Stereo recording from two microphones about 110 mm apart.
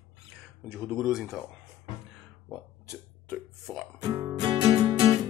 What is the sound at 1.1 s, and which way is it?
Speech, centre (ahead or behind).